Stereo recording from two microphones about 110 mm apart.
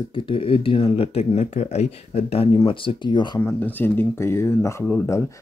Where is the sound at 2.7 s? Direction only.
50° left (ahead or behind).